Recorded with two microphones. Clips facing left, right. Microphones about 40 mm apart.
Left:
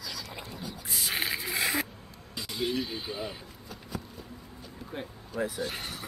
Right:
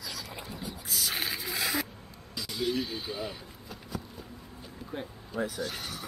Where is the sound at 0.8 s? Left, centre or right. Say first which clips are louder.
Left 2 dB; left.